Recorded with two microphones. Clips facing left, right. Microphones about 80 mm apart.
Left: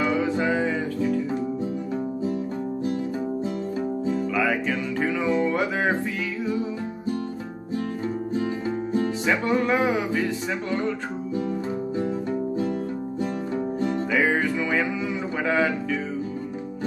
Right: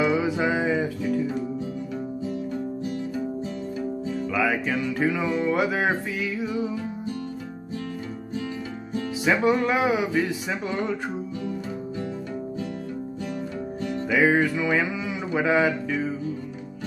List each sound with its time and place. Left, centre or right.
0.0 s music: centre
4.3 s music: centre
9.2 s music: centre
12.0 s music: left
13.7 s music: left
14.1 s music: centre
15.3 s a man's voice: centre